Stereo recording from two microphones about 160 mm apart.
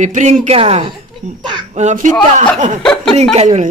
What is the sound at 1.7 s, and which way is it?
Speech, 50° right (ahead or behind).